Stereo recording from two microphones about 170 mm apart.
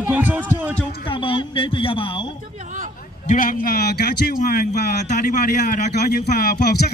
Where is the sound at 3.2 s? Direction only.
55° left (ahead or behind).